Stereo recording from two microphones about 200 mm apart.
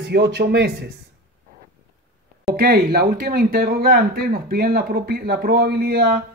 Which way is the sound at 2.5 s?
50° right (ahead or behind).